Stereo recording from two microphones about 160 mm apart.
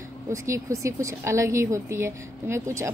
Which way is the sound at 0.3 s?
20° right (ahead or behind).